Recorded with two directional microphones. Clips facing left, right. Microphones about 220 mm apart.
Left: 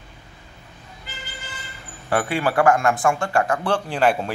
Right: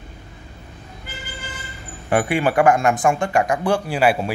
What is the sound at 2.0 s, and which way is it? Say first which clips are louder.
Speech: right 3 dB; 15° right (ahead or behind).